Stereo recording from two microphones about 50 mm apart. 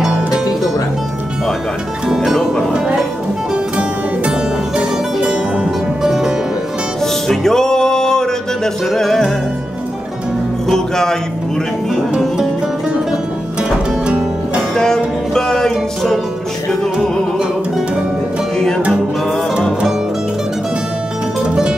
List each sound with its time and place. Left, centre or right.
2.0 s music: centre
3.5 s music: right
6.0 s music: centre
7.2 s music: centre
14.8 s music: centre